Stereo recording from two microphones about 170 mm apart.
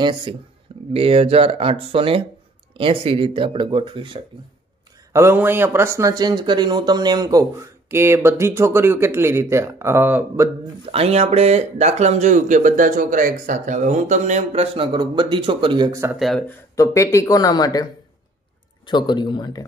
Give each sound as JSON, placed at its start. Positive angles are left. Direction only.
{"t": 0.0, "sound": "speech", "side_deg": -30}
{"t": 5.1, "sound": "speech", "side_deg": -15}
{"t": 10.9, "sound": "speech", "side_deg": -35}
{"t": 16.2, "sound": "speech", "side_deg": 5}
{"t": 16.7, "sound": "speech", "side_deg": 20}
{"t": 18.9, "sound": "speech", "side_deg": 25}